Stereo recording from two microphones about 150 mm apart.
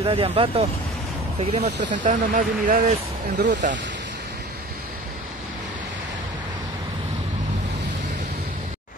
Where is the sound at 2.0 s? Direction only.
65° right (ahead or behind).